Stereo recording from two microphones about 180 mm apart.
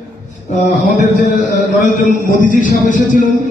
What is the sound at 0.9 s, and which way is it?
Music, 45° left (ahead or behind).